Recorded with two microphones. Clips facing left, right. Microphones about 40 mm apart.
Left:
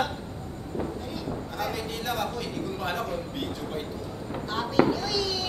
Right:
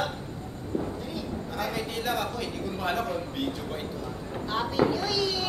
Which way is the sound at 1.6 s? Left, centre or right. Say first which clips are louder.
Right 2 dB; centre.